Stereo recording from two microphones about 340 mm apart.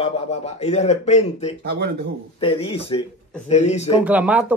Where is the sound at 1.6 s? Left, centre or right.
Right.